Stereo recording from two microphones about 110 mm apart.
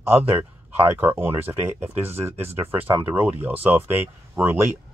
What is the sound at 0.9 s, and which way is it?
Speech, 20° right (ahead or behind).